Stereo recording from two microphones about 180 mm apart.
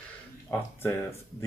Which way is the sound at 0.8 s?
15° left (ahead or behind).